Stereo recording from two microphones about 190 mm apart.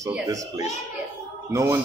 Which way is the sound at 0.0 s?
15° right (ahead or behind).